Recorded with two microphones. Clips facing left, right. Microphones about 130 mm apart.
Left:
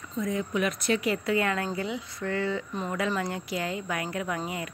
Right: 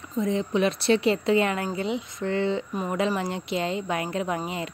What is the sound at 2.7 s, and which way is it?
A woman's voice, 10° right (ahead or behind).